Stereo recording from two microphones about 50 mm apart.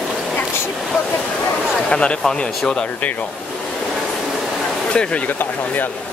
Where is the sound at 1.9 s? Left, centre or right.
Left.